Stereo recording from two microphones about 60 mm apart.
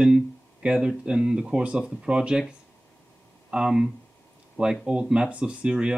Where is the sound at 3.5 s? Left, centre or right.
Centre.